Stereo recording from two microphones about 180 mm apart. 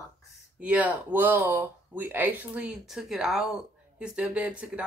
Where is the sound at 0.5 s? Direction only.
10° right (ahead or behind).